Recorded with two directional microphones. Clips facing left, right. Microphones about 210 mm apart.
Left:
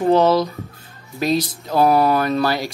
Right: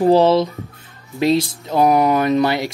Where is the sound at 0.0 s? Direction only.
30° right (ahead or behind).